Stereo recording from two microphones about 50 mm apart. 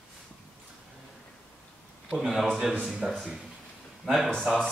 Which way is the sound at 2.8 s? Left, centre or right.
Centre.